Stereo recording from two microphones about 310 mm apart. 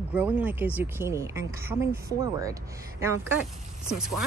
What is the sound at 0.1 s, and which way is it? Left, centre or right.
Speech, centre.